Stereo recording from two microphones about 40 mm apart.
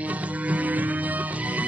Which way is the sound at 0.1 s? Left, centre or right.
Right.